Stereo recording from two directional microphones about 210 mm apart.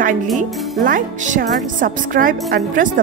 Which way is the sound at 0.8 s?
40° right (ahead or behind).